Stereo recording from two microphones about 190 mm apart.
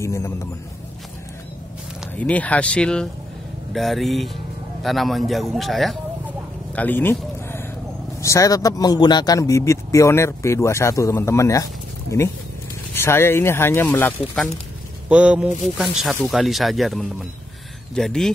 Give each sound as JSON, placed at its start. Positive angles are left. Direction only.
{"t": 0.0, "sound": "a man's voice", "side_deg": 15}
{"t": 2.0, "sound": "speech", "side_deg": 5}
{"t": 6.7, "sound": "a sound", "side_deg": 10}
{"t": 8.2, "sound": "a man's voice", "side_deg": 15}
{"t": 12.9, "sound": "a man's voice", "side_deg": 10}
{"t": 15.0, "sound": "speech", "side_deg": -5}